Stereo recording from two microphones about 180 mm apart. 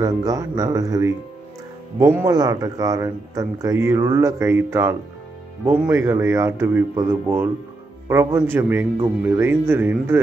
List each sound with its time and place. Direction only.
0.0 s a man's voice: 20° right (ahead or behind)